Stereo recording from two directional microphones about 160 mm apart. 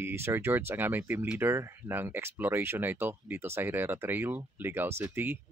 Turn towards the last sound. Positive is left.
turn(degrees=-10)  # may be behind; listen again after turning